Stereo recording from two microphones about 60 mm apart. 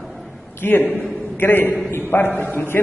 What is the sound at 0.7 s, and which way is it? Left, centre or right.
A man's voice, left.